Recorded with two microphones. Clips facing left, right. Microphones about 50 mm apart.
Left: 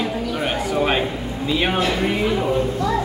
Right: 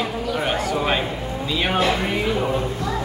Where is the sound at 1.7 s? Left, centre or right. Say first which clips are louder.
Even; centre.